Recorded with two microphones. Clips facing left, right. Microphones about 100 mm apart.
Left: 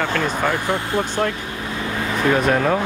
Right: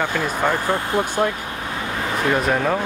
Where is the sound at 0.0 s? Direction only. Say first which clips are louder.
Even; 10° right (ahead or behind).